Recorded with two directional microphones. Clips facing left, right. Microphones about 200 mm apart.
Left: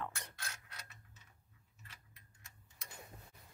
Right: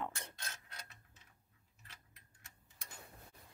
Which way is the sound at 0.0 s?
20° right (ahead or behind).